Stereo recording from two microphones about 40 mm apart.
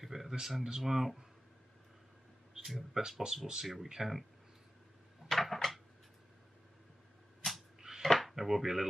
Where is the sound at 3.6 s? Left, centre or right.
Centre.